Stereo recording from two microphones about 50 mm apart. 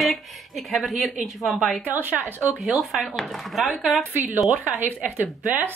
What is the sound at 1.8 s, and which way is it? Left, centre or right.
Speech, right.